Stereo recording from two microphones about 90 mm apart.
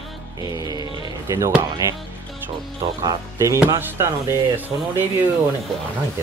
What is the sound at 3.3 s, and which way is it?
Speech, 35° right (ahead or behind).